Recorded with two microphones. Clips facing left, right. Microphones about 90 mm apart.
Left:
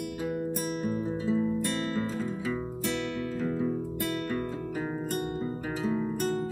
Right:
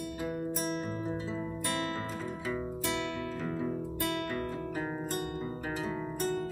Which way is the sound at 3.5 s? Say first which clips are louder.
Left 4 dB; 10° left (ahead or behind).